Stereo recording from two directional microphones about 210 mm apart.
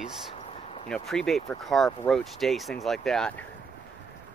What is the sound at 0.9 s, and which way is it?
Speech, centre (ahead or behind).